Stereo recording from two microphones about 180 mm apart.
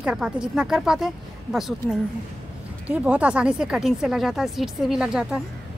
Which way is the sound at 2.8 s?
5° right (ahead or behind).